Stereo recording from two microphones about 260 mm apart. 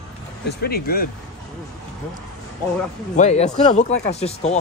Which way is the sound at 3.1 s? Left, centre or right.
Left.